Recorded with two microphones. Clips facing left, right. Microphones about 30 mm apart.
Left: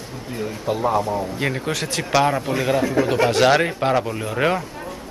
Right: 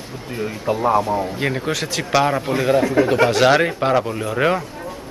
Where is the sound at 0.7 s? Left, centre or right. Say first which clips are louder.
Right 3 dB; right.